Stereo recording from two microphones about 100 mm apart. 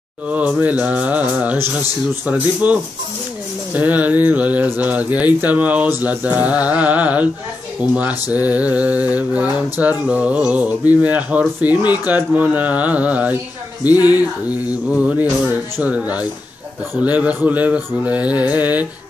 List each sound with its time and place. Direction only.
0.3 s mantra: 15° right (ahead or behind)
15.8 s mantra: 15° right (ahead or behind)